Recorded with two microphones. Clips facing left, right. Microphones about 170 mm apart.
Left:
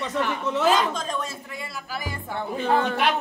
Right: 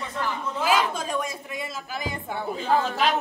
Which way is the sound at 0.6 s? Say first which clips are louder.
Left 1 dB; 10° right (ahead or behind).